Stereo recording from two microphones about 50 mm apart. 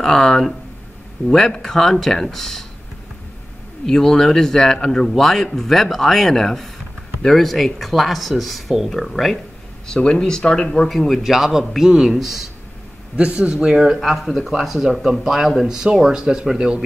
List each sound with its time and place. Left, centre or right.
0.0 s speech: centre
3.8 s speech: centre
9.8 s speech: centre
11.1 s speech: centre
13.1 s speech: right